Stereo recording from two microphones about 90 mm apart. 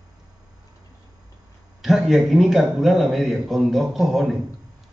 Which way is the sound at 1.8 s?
Centre (ahead or behind).